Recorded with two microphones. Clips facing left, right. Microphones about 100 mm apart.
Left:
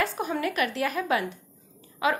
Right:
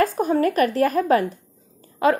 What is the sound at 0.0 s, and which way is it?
A woman's voice, 40° right (ahead or behind).